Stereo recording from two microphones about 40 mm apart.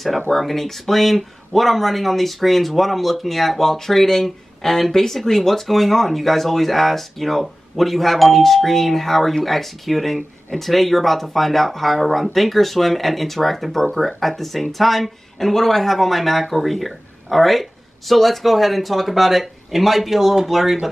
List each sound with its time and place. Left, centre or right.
0.3 s speech: centre